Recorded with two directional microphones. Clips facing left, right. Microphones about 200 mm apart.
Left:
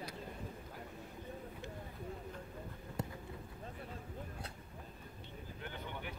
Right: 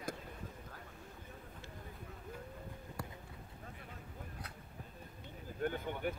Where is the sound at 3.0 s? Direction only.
20° left (ahead or behind).